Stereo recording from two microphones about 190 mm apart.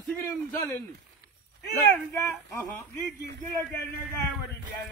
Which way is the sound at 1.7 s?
15° left (ahead or behind).